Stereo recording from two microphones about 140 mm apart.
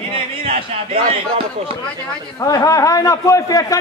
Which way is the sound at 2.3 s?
25° left (ahead or behind).